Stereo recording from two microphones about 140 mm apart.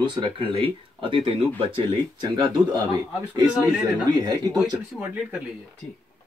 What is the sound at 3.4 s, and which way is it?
Speech, 5° right (ahead or behind).